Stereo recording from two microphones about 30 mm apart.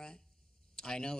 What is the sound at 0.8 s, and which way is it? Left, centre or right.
Speech, left.